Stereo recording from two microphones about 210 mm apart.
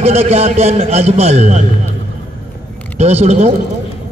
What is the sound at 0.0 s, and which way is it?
A man's voice, 30° right (ahead or behind).